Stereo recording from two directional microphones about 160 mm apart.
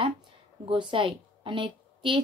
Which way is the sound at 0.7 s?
30° right (ahead or behind).